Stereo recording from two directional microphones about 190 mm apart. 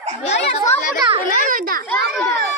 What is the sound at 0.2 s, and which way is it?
Speech, 35° left (ahead or behind).